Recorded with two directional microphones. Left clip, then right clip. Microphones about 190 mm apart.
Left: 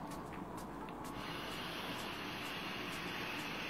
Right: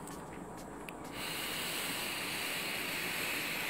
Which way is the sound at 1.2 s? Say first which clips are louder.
Right 7 dB; 40° right (ahead or behind).